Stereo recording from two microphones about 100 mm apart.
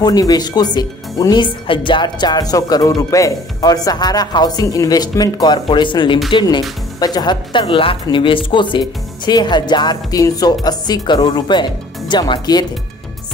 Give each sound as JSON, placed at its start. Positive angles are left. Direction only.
{"t": 0.0, "sound": "speech", "side_deg": 40}
{"t": 1.3, "sound": "speech", "side_deg": 55}
{"t": 7.0, "sound": "speech", "side_deg": 45}